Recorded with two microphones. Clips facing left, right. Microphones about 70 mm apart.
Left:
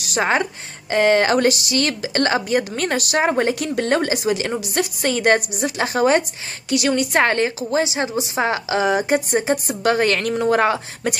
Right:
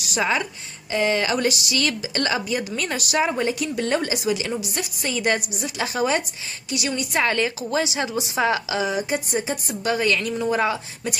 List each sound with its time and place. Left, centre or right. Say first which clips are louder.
0.0 s a woman's voice: left 4 dB; left